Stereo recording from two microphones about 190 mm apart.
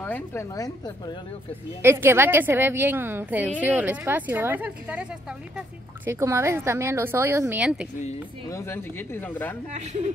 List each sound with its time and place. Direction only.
0.0 s speech: 10° left (ahead or behind)
1.8 s speech: 10° right (ahead or behind)
6.0 s speech: 15° right (ahead or behind)
8.5 s speech: 15° left (ahead or behind)
9.7 s speech: 40° right (ahead or behind)